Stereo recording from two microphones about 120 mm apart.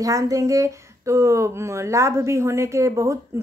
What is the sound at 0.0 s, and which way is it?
A woman's voice, 30° right (ahead or behind).